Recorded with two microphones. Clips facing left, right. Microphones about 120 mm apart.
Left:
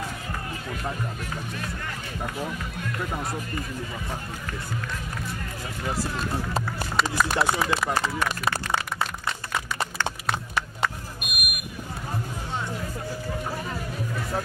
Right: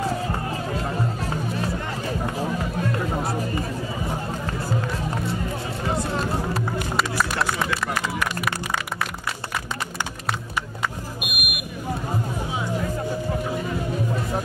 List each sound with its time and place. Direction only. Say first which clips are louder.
0.9 s music: right 6 dB; 35° right (ahead or behind)
2.8 s speech: right 4 dB; 30° right (ahead or behind)
7.0 s speech: left 2 dB; centre (ahead or behind)
10.5 s vehicle: even; 5° right (ahead or behind)